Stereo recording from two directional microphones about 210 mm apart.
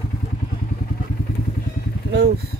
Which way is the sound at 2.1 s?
55° right (ahead or behind).